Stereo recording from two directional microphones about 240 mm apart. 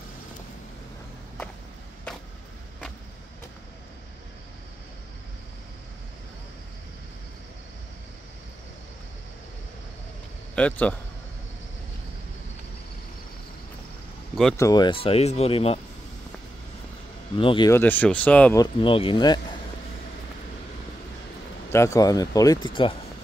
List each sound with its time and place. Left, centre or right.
10.5 s speech: centre
14.6 s speech: centre
17.4 s speech: centre
18.6 s speech: centre
21.7 s speech: centre